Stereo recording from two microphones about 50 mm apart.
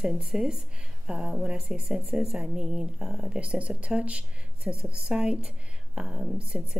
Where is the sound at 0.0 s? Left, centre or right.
Centre.